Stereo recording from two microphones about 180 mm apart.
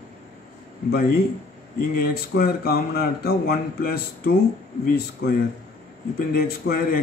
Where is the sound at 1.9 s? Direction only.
55° left (ahead or behind).